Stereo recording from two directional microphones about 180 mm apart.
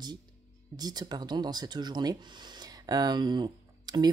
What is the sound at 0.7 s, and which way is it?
Speech, 20° right (ahead or behind).